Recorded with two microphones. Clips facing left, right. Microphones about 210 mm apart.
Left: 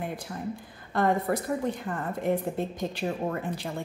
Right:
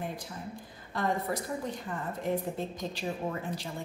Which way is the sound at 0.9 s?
60° left (ahead or behind).